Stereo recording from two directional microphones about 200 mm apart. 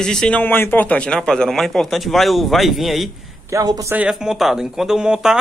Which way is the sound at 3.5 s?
15° right (ahead or behind).